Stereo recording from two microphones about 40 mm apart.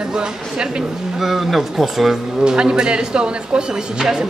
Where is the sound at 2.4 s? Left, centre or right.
Right.